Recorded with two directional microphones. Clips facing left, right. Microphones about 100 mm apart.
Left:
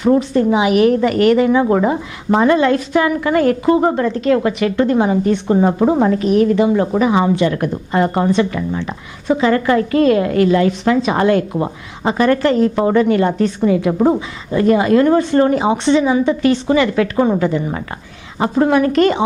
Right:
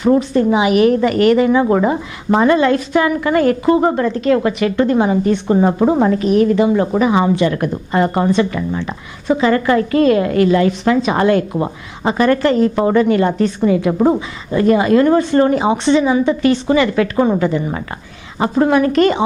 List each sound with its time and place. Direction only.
0.0 s speech: 20° right (ahead or behind)